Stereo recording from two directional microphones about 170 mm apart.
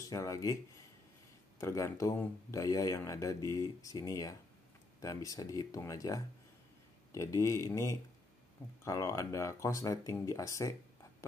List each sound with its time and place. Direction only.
0.0 s speech: 20° left (ahead or behind)
1.6 s speech: 15° left (ahead or behind)